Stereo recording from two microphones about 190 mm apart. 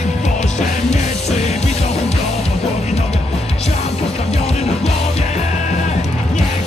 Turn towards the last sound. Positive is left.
turn(degrees=35)  # may be behind; listen again after turning